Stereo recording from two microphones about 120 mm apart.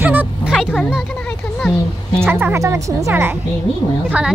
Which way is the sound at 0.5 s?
5° right (ahead or behind).